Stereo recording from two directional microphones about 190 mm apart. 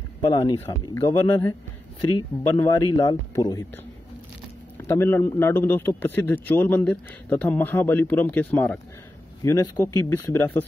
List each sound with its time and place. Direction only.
0.2 s speech: 25° left (ahead or behind)
4.8 s speech: 15° left (ahead or behind)